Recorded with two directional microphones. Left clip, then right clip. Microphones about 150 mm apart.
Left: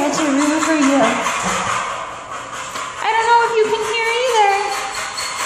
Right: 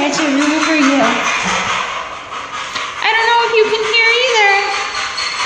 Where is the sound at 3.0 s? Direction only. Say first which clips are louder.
Right 1 dB; 5° right (ahead or behind).